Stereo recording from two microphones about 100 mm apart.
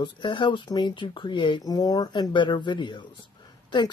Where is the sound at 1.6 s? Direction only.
40° left (ahead or behind).